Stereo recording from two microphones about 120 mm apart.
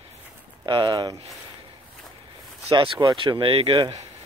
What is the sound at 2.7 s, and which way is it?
Speech, 35° right (ahead or behind).